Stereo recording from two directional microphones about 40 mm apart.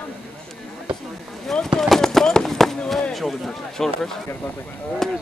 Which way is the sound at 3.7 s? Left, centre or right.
Centre.